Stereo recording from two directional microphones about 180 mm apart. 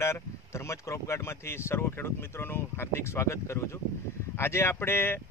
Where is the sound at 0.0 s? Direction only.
15° left (ahead or behind).